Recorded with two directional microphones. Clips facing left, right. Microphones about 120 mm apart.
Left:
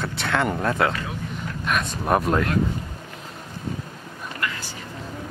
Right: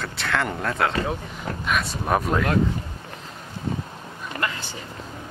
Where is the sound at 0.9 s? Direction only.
40° right (ahead or behind).